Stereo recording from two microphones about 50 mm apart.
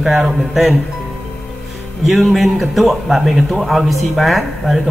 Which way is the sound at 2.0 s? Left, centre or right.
Centre.